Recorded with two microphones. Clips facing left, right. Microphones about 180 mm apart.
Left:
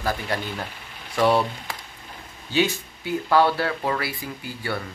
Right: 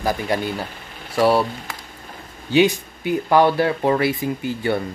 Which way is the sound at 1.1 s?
5° right (ahead or behind).